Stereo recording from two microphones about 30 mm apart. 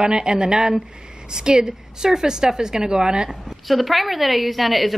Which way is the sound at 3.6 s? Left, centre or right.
Centre.